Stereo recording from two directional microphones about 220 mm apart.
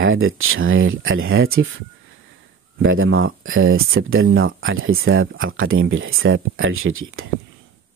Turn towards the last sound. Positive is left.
turn(degrees=-70)  # may be behind; listen again after turning